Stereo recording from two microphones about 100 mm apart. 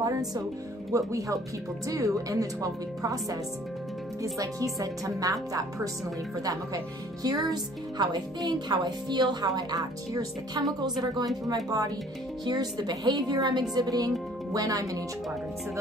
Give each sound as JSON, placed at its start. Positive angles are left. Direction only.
{"t": 0.0, "sound": "music", "side_deg": -40}
{"t": 0.9, "sound": "a woman's voice", "side_deg": -35}